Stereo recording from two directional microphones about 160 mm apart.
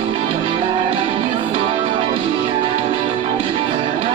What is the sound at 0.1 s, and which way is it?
Music, 30° right (ahead or behind).